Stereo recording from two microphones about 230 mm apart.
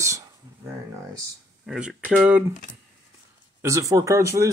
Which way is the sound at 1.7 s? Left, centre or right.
Centre.